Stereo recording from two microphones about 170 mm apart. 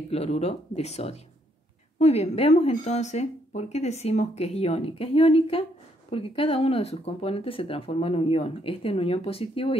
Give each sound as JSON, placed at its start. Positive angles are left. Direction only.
{"t": 0.1, "sound": "speech", "side_deg": 40}